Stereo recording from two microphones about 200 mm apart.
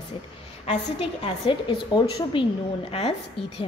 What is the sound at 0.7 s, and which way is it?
A woman's voice, 25° left (ahead or behind).